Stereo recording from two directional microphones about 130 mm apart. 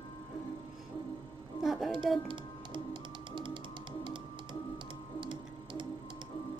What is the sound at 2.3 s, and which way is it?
Music, 35° right (ahead or behind).